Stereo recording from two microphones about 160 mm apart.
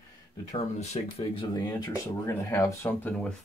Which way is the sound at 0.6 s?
45° left (ahead or behind).